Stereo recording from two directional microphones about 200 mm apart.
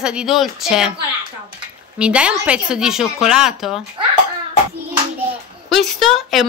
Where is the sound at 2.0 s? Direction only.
5° right (ahead or behind).